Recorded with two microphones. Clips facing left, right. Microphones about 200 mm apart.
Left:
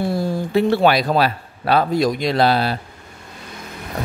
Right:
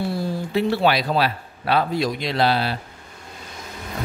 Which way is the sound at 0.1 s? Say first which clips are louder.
Left 4 dB; 45° left (ahead or behind).